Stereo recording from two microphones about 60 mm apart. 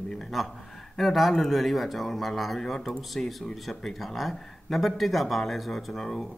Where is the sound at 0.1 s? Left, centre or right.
Centre.